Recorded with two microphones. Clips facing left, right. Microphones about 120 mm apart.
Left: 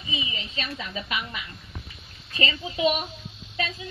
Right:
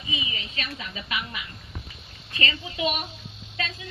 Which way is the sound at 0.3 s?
30° left (ahead or behind).